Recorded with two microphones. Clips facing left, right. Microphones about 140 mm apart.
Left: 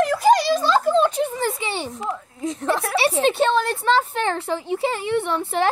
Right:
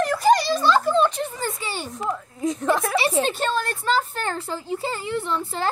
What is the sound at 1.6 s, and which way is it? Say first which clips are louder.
A child's voice: left 2 dB; 25° left (ahead or behind).